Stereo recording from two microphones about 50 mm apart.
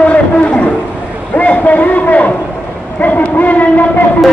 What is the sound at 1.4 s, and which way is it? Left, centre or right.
A man's voice, left.